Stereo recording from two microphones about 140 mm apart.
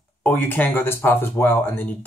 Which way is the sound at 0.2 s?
15° left (ahead or behind).